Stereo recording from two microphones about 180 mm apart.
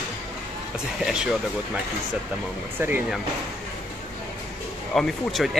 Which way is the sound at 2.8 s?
15° right (ahead or behind).